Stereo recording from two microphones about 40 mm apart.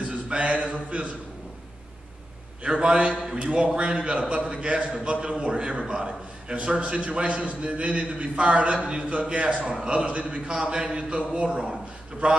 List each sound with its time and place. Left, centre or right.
0.3 s speech: right
2.6 s a man's voice: right